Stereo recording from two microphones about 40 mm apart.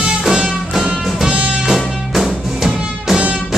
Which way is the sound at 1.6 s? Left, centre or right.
Centre.